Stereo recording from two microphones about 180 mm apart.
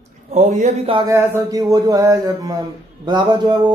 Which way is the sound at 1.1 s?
20° right (ahead or behind).